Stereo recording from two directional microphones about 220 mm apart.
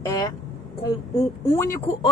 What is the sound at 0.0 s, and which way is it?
Vehicle, 15° left (ahead or behind).